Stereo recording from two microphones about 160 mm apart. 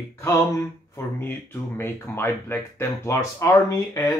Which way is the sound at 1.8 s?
15° left (ahead or behind).